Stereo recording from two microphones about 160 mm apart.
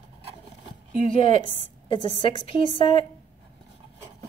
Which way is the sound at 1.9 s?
30° left (ahead or behind).